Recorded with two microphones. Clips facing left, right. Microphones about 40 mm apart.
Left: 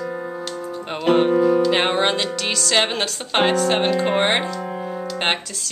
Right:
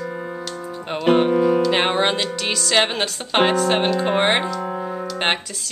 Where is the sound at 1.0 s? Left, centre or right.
Centre.